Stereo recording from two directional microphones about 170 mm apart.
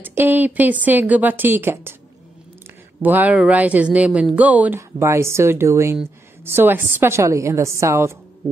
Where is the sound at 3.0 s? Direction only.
10° right (ahead or behind).